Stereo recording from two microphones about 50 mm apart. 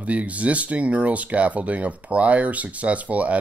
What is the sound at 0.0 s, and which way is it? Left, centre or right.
Speech, right.